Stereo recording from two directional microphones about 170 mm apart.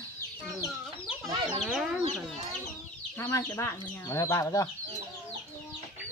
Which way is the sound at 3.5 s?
15° left (ahead or behind).